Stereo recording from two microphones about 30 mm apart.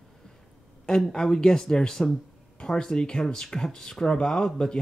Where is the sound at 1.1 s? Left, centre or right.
Left.